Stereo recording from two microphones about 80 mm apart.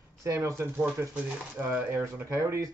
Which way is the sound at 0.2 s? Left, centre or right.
Right.